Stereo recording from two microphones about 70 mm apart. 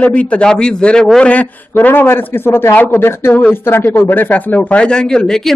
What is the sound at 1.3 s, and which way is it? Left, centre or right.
A man's voice, left.